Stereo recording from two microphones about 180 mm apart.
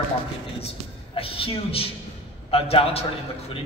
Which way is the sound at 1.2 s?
30° left (ahead or behind).